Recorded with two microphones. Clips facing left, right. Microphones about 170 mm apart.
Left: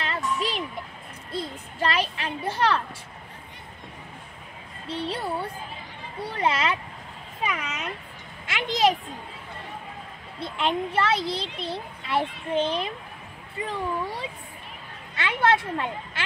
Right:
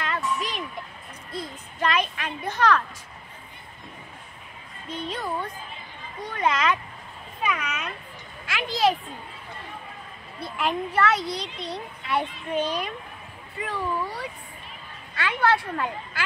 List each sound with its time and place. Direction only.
0.0 s music: 30° left (ahead or behind)
1.3 s a child's voice: 30° left (ahead or behind)
4.8 s a woman's voice: 30° left (ahead or behind)
10.4 s a child's voice: 25° left (ahead or behind)
15.1 s a child's voice: 20° left (ahead or behind)